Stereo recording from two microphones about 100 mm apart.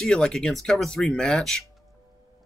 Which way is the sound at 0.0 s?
5° left (ahead or behind).